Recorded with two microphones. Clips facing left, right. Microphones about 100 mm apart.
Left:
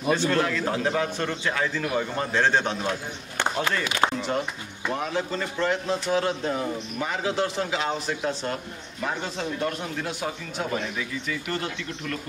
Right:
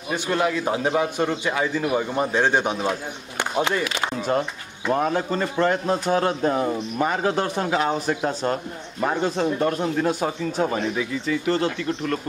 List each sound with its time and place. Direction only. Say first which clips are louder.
0.1 s a man's voice: right 1 dB; 15° right (ahead or behind)
4.9 s a man's voice: right 6 dB; 45° right (ahead or behind)
11.2 s speech: right 10 dB; 30° right (ahead or behind)